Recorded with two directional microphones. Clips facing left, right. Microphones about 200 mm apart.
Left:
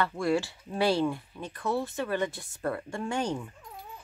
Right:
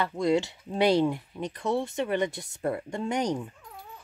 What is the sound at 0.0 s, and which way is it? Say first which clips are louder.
Speech: right 2 dB; 20° right (ahead or behind).